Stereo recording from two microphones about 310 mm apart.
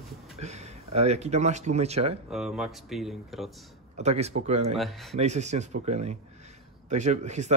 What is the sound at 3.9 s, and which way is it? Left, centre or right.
Speech, right.